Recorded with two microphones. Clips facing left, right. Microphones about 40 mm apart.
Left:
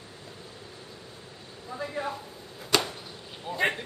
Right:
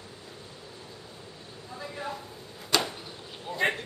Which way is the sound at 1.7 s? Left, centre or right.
Centre.